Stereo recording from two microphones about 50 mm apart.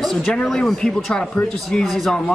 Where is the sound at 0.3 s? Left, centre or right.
Centre.